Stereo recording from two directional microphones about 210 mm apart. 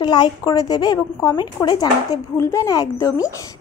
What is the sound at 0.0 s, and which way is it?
A woman's voice, 20° left (ahead or behind).